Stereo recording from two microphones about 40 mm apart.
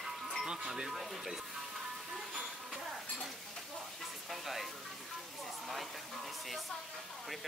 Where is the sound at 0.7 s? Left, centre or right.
Centre.